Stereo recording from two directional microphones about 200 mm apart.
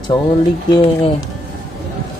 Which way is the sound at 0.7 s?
25° left (ahead or behind).